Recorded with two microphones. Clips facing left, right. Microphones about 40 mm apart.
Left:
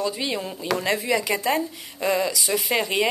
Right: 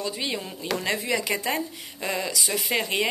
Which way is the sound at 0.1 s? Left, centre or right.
Centre.